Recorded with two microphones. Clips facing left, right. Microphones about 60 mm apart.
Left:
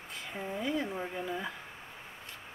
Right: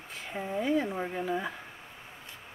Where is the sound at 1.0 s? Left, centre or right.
Centre.